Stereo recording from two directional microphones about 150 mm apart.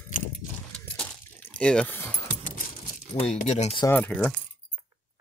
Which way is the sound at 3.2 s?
45° left (ahead or behind).